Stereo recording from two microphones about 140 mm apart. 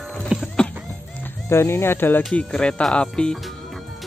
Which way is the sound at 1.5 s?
20° left (ahead or behind).